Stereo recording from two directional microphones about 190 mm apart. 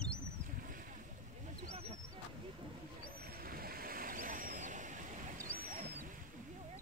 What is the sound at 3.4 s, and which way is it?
Vehicle, 50° right (ahead or behind).